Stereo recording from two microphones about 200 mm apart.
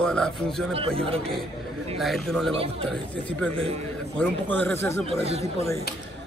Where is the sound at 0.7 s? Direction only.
25° right (ahead or behind).